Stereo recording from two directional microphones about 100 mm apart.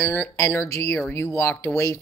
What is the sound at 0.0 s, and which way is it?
Speech, 30° left (ahead or behind).